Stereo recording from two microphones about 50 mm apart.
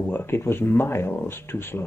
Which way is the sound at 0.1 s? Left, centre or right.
Left.